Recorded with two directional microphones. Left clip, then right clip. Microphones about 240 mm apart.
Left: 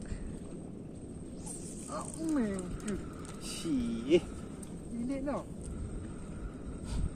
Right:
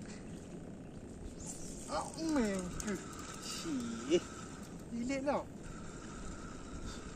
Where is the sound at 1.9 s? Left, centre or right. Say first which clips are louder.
Left 1 dB; right.